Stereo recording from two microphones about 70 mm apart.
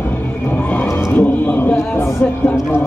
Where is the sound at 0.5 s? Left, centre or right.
Left.